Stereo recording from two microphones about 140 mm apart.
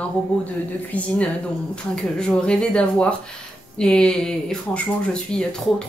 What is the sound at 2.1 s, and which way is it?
Speech, 5° left (ahead or behind).